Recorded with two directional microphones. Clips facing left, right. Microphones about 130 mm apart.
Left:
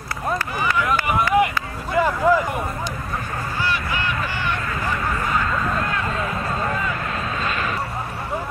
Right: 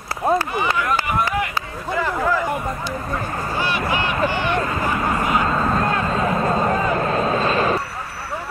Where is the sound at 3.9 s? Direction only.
25° right (ahead or behind).